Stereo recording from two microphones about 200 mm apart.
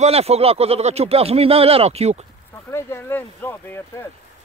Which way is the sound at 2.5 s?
10° left (ahead or behind).